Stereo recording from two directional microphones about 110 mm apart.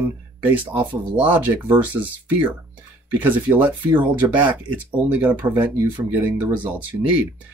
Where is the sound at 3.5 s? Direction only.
15° right (ahead or behind).